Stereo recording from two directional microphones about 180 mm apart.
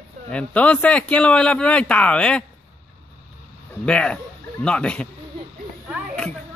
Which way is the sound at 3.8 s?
5° left (ahead or behind).